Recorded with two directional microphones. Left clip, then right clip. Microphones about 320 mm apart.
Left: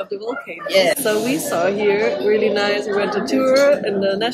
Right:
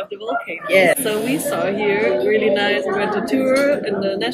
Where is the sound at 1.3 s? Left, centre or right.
Centre.